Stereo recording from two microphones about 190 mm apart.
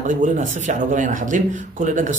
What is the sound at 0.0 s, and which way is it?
Speech, 45° right (ahead or behind).